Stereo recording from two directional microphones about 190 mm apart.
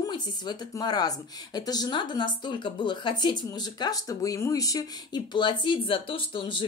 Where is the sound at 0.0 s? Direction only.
20° left (ahead or behind).